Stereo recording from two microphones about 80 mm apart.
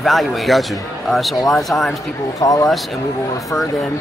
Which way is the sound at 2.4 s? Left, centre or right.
Left.